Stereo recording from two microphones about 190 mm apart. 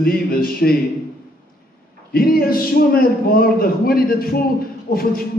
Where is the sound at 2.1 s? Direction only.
50° left (ahead or behind).